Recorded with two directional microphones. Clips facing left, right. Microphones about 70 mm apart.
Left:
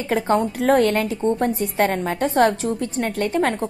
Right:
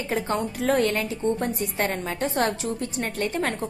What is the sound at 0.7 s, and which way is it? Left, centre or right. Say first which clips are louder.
Speech: left 5 dB; left.